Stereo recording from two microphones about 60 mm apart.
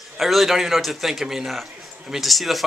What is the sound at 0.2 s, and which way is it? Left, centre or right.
A man's voice, centre.